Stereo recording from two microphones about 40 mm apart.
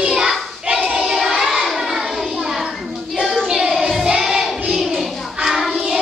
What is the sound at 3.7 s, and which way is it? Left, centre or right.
Child singing, centre.